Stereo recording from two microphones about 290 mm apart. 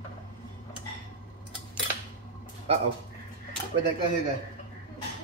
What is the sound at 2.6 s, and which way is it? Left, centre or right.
Speech, right.